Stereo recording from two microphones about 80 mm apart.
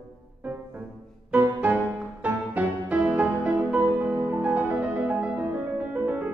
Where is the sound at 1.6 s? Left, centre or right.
Centre.